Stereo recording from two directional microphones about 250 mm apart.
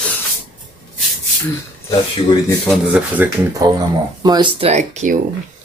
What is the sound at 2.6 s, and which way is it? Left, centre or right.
Speech, centre.